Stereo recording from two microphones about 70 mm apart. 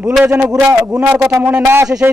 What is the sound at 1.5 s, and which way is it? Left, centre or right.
Speech, right.